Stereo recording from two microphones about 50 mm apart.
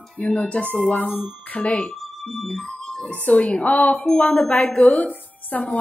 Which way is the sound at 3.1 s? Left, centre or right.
Left.